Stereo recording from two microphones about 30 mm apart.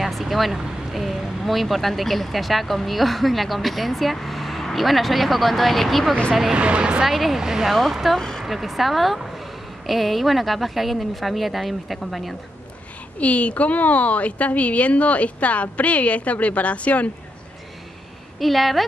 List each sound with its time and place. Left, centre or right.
0.0 s speech: centre
6.5 s speech: right
7.1 s speech: centre
7.3 s speech: centre
7.6 s speech: centre
8.2 s a sound: centre
8.5 s speech: centre
13.2 s a woman's voice: left
18.4 s speech: centre